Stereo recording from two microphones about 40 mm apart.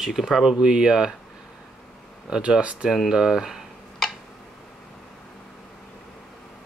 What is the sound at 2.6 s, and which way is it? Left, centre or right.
Speech, right.